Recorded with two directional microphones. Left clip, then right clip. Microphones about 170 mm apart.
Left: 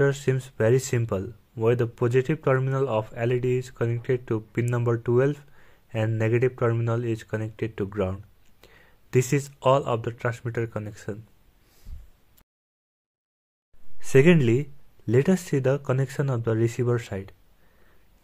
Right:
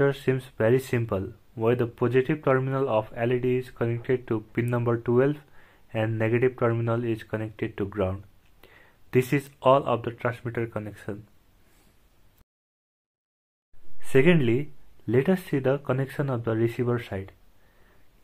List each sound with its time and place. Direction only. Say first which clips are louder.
0.0 s speech: even; 30° left (ahead or behind)
13.9 s speech: left 2 dB; 35° left (ahead or behind)